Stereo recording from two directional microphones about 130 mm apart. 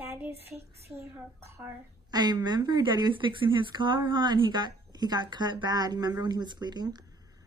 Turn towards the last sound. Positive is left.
turn(degrees=-35)  # may be behind; listen again after turning